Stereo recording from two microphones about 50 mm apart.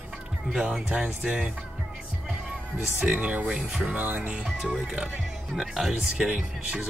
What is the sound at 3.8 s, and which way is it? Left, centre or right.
Music, right.